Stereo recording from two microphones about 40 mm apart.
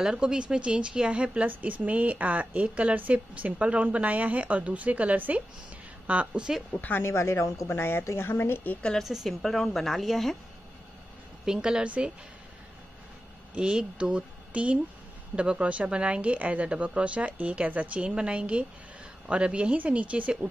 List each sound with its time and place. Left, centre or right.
0.0 s a woman's voice: centre
1.5 s speech: right
6.5 s a woman's voice: centre
7.0 s a woman's voice: left
9.0 s a woman's voice: centre
9.4 s speech: centre
11.4 s a woman's voice: centre
13.6 s a woman's voice: right